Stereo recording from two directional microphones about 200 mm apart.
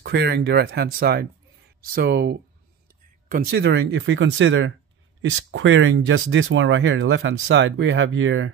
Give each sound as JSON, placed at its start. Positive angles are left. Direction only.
{"t": 0.0, "sound": "speech", "side_deg": -55}